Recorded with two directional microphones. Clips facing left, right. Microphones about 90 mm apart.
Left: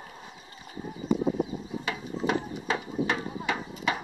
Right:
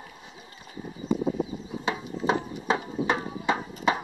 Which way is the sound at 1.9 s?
30° right (ahead or behind).